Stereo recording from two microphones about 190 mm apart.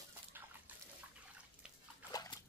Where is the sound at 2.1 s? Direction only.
20° left (ahead or behind).